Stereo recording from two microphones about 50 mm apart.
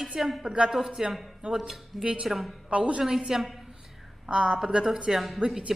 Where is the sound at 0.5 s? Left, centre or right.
Centre.